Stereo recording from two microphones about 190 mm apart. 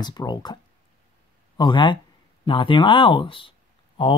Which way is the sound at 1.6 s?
25° left (ahead or behind).